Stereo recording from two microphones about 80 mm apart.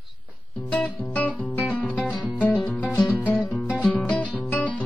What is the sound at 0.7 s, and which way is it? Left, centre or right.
Music, centre.